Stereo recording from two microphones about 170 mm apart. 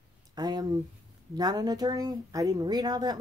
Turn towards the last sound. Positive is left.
turn(degrees=-25)  # may be behind; listen again after turning